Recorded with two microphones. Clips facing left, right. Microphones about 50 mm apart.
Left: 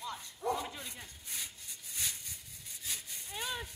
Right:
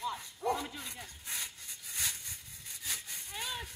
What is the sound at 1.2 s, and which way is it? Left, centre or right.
Rub, right.